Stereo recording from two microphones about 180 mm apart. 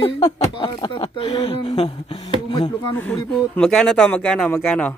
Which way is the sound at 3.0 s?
10° left (ahead or behind).